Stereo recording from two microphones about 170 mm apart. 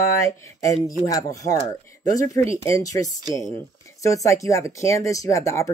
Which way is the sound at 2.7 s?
20° left (ahead or behind).